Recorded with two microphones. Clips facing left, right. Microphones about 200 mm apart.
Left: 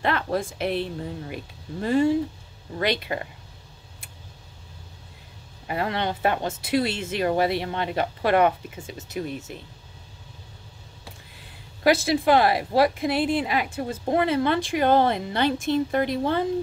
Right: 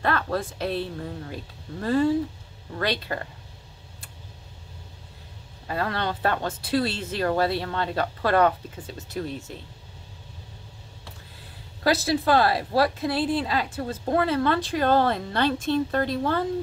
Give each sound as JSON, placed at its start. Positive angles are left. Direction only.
{"t": 0.0, "sound": "a woman's voice", "side_deg": 20}
{"t": 5.7, "sound": "a woman's voice", "side_deg": 20}
{"t": 8.7, "sound": "a woman's voice", "side_deg": 10}
{"t": 11.8, "sound": "a woman's voice", "side_deg": 20}